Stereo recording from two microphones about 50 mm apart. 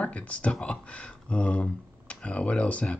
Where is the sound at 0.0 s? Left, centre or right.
Left.